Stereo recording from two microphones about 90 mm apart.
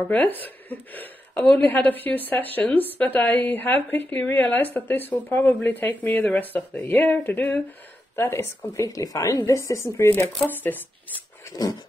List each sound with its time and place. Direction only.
0.1 s speech: 20° left (ahead or behind)
1.4 s a woman's voice: 5° left (ahead or behind)
1.7 s speech: 20° left (ahead or behind)
8.2 s speech: 30° left (ahead or behind)
8.8 s speech: 40° left (ahead or behind); by 11.2 s 20° left (ahead or behind)